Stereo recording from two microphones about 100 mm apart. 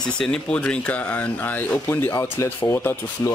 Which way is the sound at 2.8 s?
20° left (ahead or behind).